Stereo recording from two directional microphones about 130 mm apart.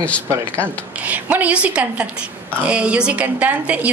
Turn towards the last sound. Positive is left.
turn(degrees=-10)  # may be behind; listen again after turning